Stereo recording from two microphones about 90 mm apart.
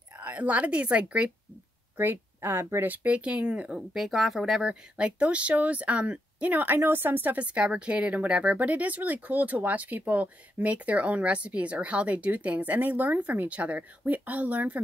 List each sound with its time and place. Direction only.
0.2 s speech: 15° right (ahead or behind)
2.0 s speech: 25° right (ahead or behind)